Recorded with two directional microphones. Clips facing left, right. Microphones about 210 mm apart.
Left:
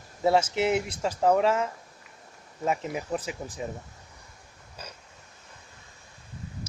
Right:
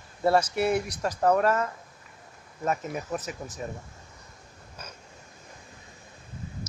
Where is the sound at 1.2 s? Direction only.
10° left (ahead or behind).